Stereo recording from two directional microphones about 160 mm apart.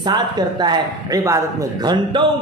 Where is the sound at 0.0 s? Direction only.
25° right (ahead or behind).